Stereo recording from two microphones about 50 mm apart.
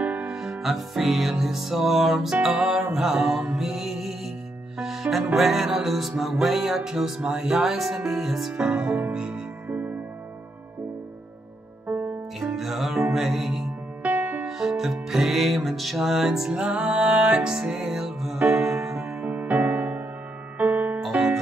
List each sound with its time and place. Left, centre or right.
0.0 s music: right
0.3 s music: centre
8.5 s music: centre
9.7 s music: right
11.9 s music: right
12.5 s music: centre
14.0 s music: right
14.4 s music: centre
18.4 s music: right
19.0 s music: right